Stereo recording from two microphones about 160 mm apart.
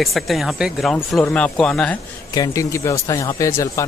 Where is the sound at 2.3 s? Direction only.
20° left (ahead or behind).